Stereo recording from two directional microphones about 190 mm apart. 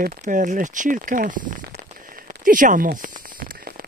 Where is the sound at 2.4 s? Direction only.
45° right (ahead or behind).